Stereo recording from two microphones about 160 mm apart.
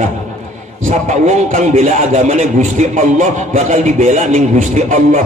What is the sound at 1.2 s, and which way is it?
Speech, 50° right (ahead or behind).